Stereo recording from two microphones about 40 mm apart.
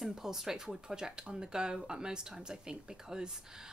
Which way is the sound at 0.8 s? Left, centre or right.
Centre.